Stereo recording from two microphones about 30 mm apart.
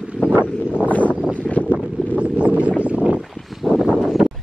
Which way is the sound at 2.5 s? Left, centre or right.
Right.